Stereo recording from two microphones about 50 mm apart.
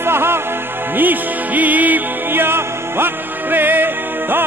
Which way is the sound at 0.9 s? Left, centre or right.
Right.